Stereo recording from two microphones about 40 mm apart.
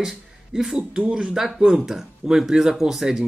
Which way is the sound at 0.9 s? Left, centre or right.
Right.